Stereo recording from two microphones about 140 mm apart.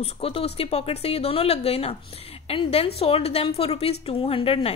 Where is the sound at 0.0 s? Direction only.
45° left (ahead or behind).